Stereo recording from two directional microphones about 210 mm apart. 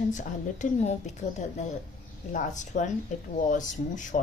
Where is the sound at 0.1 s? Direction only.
35° left (ahead or behind).